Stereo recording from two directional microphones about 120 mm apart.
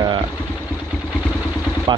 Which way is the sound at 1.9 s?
40° right (ahead or behind).